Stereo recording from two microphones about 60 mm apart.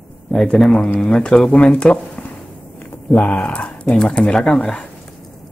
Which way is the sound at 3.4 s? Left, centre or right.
Left.